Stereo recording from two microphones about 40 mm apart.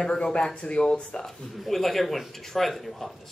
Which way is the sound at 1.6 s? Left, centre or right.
Centre.